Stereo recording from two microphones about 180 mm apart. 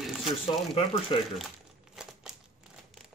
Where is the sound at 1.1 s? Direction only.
30° left (ahead or behind).